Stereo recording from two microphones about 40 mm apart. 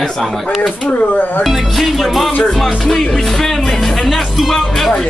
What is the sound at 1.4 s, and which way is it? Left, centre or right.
Music, centre.